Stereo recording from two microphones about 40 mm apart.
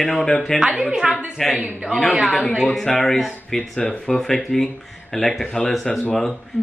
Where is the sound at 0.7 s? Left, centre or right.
Centre.